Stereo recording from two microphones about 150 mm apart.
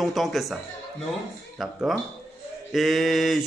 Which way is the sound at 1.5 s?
Centre (ahead or behind).